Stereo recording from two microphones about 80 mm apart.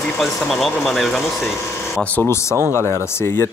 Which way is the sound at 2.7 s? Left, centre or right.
Left.